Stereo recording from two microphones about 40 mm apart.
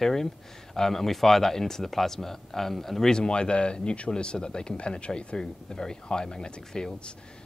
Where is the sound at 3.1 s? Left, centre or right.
Left.